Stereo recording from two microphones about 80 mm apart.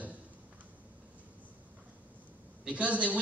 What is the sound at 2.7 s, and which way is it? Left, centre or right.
Speech, centre.